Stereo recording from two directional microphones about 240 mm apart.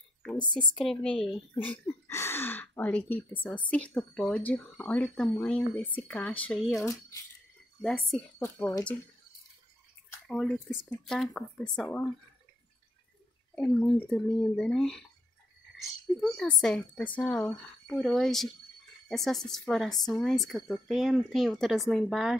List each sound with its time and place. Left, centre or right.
0.4 s speech: centre
0.7 s speech: centre
10.2 s speech: centre
13.6 s speech: centre